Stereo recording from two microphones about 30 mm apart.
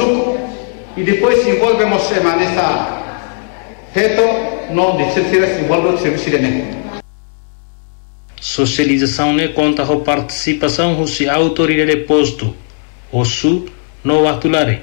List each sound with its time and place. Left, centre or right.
0.0 s a man's voice: right
8.4 s speech: right